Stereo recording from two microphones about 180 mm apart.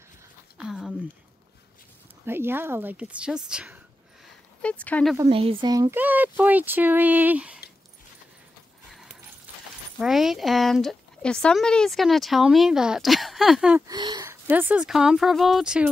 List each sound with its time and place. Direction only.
0.6 s a sound: 5° right (ahead or behind)
2.2 s speech: 10° right (ahead or behind)
4.6 s speech: 5° left (ahead or behind)
5.3 s speech: 30° right (ahead or behind); by 7.6 s 5° right (ahead or behind)
9.9 s speech: centre (ahead or behind)
13.8 s speech: 25° right (ahead or behind)
14.2 s speech: 10° right (ahead or behind)